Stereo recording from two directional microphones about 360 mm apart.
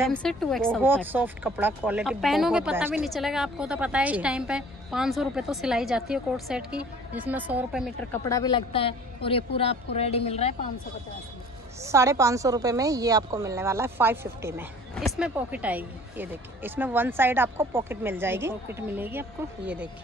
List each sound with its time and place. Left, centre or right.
0.0 s a woman's voice: centre
11.8 s a woman's voice: centre